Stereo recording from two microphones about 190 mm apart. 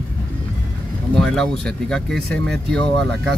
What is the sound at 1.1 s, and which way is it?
Speech, 5° left (ahead or behind).